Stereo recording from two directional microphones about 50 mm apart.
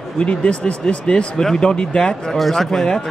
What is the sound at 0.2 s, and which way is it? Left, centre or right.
Speech, left.